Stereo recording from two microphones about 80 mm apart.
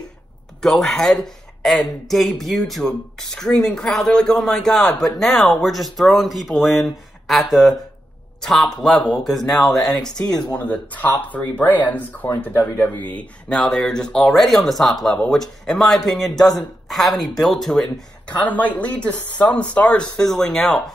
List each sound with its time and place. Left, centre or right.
0.6 s speech: centre
10.5 s speech: centre
13.5 s speech: centre
18.4 s speech: centre